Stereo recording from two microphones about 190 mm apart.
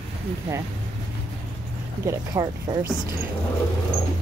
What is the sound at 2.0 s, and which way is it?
Speech, 20° right (ahead or behind).